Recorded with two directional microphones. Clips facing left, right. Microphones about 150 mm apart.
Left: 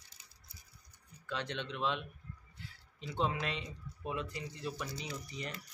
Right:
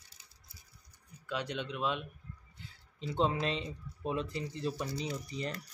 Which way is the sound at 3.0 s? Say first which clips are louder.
Right 4 dB; 30° right (ahead or behind).